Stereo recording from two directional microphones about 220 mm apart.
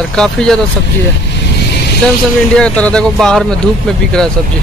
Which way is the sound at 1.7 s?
50° left (ahead or behind).